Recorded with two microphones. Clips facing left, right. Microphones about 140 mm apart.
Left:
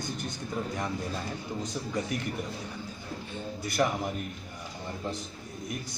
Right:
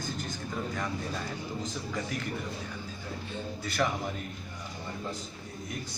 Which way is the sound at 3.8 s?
20° left (ahead or behind).